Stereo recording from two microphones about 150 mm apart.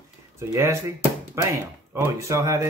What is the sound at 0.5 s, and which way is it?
Speech, 20° right (ahead or behind).